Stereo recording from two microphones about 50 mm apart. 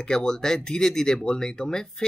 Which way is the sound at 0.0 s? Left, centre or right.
Centre.